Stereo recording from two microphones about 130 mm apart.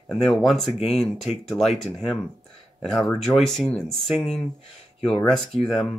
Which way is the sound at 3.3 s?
5° left (ahead or behind).